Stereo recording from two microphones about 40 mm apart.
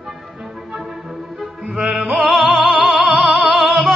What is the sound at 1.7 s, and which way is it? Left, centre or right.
Music, right.